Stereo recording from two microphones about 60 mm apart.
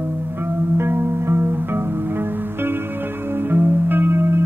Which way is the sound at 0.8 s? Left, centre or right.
Right.